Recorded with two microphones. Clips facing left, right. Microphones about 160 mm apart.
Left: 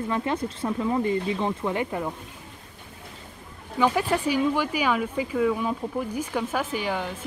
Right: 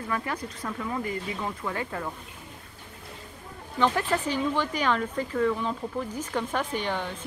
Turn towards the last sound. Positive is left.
turn(degrees=10)  # may be behind; listen again after turning